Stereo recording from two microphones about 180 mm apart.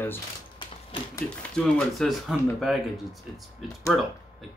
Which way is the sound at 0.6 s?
25° left (ahead or behind).